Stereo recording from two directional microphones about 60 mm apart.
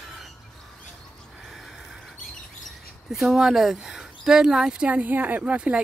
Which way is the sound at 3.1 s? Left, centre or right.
Centre.